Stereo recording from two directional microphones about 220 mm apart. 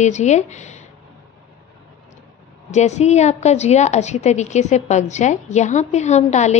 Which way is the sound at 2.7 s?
30° left (ahead or behind).